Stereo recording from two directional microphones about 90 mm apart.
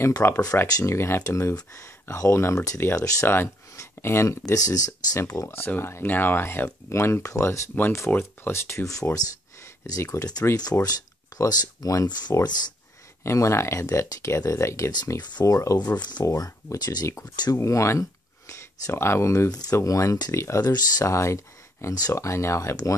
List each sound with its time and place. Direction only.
0.0 s speech: 30° left (ahead or behind)
0.7 s speech: 40° left (ahead or behind)
0.9 s speech: 30° left (ahead or behind)
5.4 s speech: 25° left (ahead or behind); by 12.4 s 50° left (ahead or behind)
13.2 s speech: 30° left (ahead or behind)
16.0 s speech: 55° left (ahead or behind)
16.3 s speech: 35° left (ahead or behind)
17.6 s speech: 35° left (ahead or behind)
19.5 s speech: 40° left (ahead or behind)